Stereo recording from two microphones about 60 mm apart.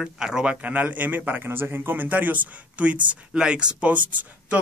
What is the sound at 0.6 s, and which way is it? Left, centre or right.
A man's voice, right.